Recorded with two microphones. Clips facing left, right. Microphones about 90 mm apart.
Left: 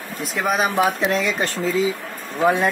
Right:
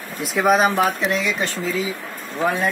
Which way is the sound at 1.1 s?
40° left (ahead or behind).